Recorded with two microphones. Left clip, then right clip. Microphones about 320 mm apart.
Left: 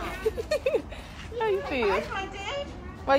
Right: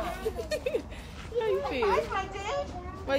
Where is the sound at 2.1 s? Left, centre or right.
Right.